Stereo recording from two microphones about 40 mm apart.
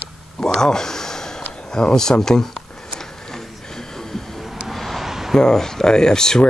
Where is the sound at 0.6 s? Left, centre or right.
Centre.